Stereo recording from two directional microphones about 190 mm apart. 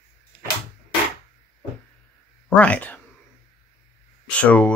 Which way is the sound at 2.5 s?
5° left (ahead or behind).